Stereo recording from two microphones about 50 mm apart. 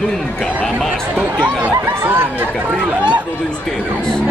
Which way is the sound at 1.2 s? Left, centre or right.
Right.